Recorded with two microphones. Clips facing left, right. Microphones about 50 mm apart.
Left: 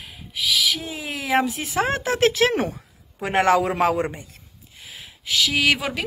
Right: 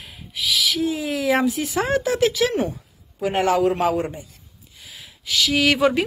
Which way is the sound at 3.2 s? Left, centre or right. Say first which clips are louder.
Even; left.